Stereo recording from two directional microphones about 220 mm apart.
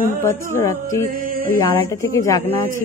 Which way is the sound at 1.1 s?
40° right (ahead or behind).